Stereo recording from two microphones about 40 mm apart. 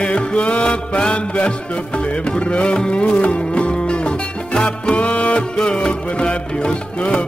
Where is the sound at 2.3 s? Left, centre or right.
Left.